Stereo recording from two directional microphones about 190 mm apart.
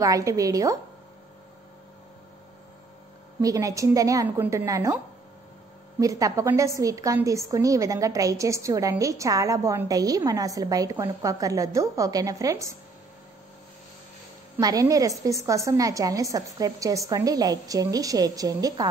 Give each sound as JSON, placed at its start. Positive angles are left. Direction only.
{"t": 0.0, "sound": "a woman's voice", "side_deg": -15}
{"t": 3.3, "sound": "a woman's voice", "side_deg": -15}
{"t": 14.6, "sound": "a woman's voice", "side_deg": -20}